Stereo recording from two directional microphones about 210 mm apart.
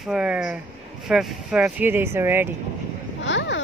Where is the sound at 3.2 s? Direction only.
60° left (ahead or behind).